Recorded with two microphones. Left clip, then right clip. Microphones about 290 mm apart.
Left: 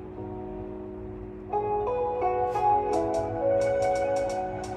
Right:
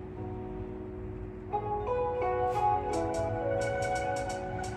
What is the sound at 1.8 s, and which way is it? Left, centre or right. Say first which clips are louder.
Music: left 4 dB; left.